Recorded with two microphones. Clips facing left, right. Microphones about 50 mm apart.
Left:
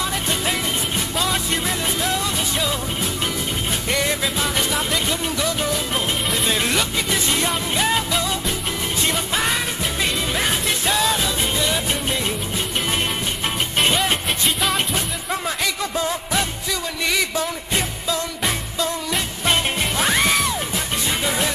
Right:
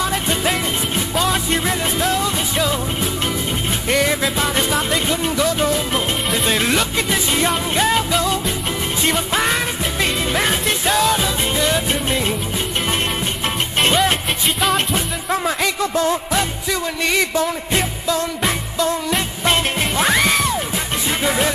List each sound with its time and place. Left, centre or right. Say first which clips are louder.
0.0 s music: right 4 dB; centre
10.5 s music: right 3 dB; centre
11.1 s music: right 3 dB; centre
13.7 s music: right 4 dB; centre
19.0 s music: right 3 dB; centre
21.2 s music: right 6 dB; centre